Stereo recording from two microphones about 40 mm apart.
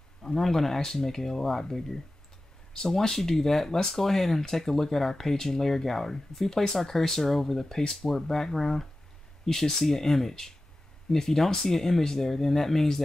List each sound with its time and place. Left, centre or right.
0.2 s speech: centre